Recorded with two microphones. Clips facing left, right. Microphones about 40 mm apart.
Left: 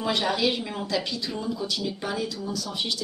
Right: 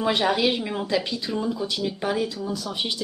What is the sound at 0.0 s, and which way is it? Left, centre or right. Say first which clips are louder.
A woman's voice: right 3 dB; centre.